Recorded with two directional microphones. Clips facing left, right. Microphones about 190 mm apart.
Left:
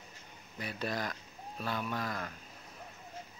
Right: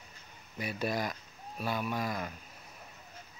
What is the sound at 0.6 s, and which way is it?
Speech, 10° right (ahead or behind).